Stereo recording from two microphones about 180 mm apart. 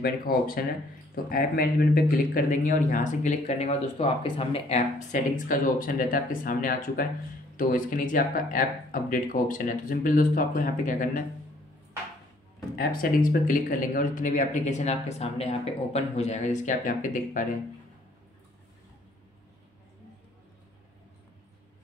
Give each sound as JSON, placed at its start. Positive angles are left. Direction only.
{"t": 0.0, "sound": "speech", "side_deg": 55}
{"t": 12.7, "sound": "speech", "side_deg": 55}